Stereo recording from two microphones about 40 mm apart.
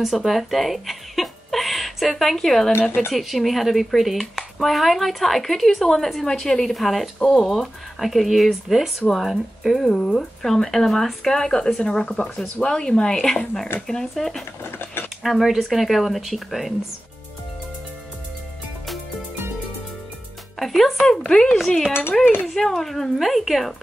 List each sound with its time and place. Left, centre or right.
0.0 s speech: centre
6.2 s speech: centre
6.7 s speech: centre
9.8 s speech: centre
14.6 s a sound: left
15.2 s speech: centre
20.5 s speech: centre
21.2 s speech: left
21.5 s speech: centre